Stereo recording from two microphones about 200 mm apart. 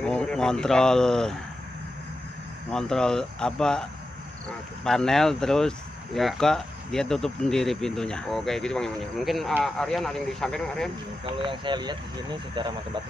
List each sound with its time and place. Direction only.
0.0 s speech: 5° left (ahead or behind)
2.7 s speech: 5° left (ahead or behind)
11.2 s speech: 25° right (ahead or behind)